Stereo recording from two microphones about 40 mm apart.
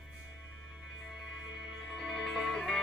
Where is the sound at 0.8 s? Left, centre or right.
Centre.